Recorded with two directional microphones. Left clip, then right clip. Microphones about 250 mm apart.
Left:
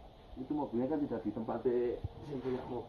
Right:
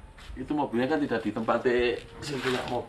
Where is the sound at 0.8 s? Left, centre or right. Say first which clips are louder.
Right 9 dB; centre.